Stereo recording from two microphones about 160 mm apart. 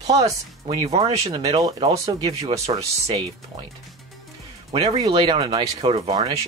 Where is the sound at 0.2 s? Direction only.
25° right (ahead or behind).